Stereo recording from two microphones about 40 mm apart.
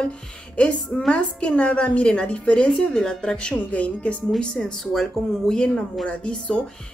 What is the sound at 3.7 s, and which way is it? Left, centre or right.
Speech, left.